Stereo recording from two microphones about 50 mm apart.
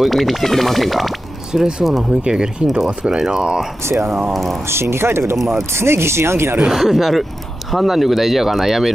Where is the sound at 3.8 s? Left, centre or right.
Right.